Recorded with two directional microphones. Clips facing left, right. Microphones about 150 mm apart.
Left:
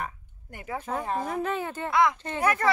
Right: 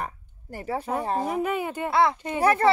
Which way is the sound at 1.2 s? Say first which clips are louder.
Right 3 dB; 10° right (ahead or behind).